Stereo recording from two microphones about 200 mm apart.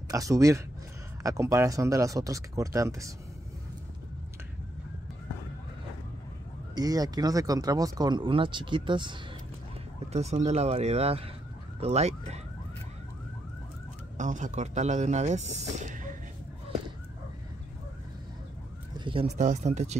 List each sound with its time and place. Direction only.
0.1 s speech: 15° right (ahead or behind)
6.7 s speech: 20° right (ahead or behind)
10.1 s speech: 35° right (ahead or behind)
14.1 s speech: 40° right (ahead or behind)
18.9 s speech: 25° right (ahead or behind)